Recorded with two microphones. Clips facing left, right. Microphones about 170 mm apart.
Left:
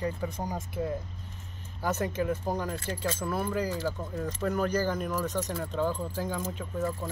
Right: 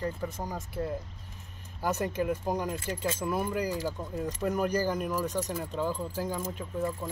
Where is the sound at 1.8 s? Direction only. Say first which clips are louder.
Even; 15° right (ahead or behind).